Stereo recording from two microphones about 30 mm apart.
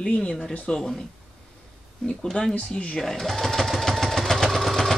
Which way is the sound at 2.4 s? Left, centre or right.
Left.